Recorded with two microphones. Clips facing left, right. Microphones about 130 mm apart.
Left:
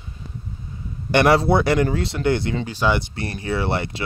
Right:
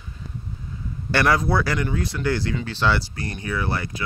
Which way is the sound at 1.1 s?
25° left (ahead or behind).